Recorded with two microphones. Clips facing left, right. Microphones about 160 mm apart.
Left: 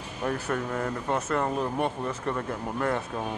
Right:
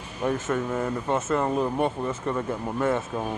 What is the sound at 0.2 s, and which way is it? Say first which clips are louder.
Speech: right 3 dB; 5° right (ahead or behind).